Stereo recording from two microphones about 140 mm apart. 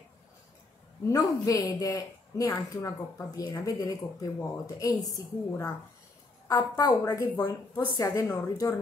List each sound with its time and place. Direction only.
1.0 s speech: 25° left (ahead or behind)